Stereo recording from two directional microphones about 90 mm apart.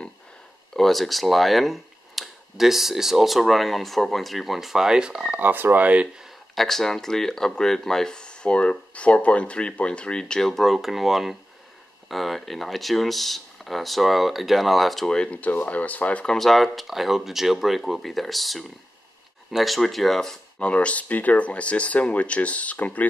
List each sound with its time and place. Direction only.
0.7 s speech: centre (ahead or behind)
5.4 s speech: 20° right (ahead or behind)
6.2 s speech: centre (ahead or behind)
16.3 s speech: centre (ahead or behind)